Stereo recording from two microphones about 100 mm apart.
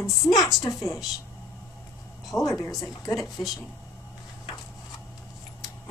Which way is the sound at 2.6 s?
Centre (ahead or behind).